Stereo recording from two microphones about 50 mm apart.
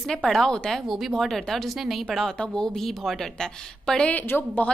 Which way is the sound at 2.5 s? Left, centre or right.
Centre.